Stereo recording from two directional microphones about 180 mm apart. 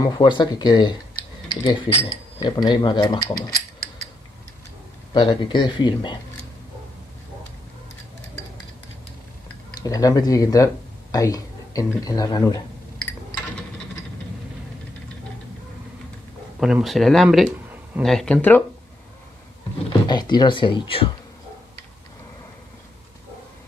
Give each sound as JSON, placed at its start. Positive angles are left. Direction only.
{"t": 0.0, "sound": "speech", "side_deg": 25}
{"t": 5.1, "sound": "speech", "side_deg": 25}
{"t": 9.8, "sound": "speech", "side_deg": 20}
{"t": 16.5, "sound": "speech", "side_deg": -5}
{"t": 20.1, "sound": "speech", "side_deg": 25}